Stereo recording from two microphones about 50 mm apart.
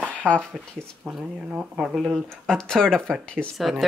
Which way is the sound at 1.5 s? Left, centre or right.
Centre.